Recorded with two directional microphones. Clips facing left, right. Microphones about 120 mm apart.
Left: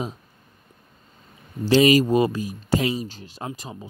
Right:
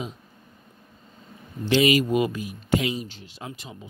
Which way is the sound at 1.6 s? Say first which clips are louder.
Left 4 dB; 35° left (ahead or behind).